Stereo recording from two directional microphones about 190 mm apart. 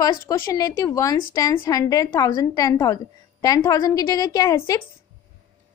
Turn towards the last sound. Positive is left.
turn(degrees=15)  # may be behind; listen again after turning